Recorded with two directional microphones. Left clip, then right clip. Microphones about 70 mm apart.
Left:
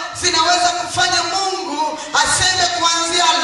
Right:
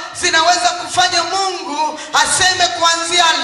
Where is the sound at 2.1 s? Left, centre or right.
Right.